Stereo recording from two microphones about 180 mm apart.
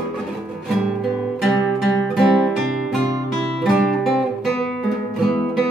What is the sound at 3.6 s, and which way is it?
Music, centre (ahead or behind).